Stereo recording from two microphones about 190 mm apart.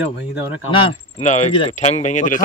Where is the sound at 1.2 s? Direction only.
40° left (ahead or behind).